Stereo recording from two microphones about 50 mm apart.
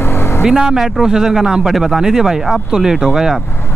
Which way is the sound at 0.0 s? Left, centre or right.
Left.